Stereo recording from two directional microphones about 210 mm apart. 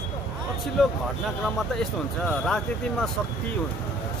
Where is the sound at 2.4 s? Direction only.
5° left (ahead or behind).